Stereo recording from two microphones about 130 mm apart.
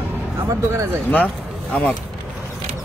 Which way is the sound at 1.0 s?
10° left (ahead or behind).